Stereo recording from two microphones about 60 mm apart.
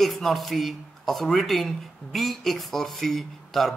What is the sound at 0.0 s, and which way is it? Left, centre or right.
Speech, centre.